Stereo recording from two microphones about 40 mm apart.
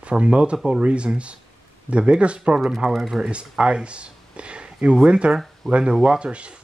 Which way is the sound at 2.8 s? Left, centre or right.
Centre.